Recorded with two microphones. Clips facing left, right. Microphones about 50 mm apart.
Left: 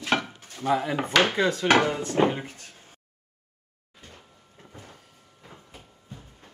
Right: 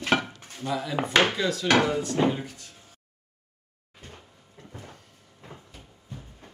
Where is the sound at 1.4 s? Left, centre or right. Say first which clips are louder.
Left 2 dB; left.